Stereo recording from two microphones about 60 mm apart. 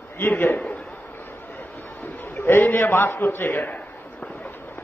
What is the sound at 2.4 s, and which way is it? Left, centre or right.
A man's voice, left.